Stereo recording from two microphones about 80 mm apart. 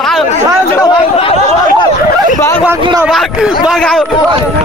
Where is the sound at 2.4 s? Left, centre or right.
Left.